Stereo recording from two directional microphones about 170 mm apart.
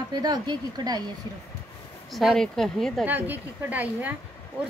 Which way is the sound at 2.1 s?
Centre (ahead or behind).